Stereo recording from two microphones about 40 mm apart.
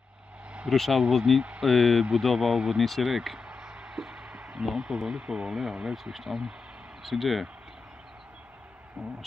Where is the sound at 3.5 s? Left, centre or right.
Centre.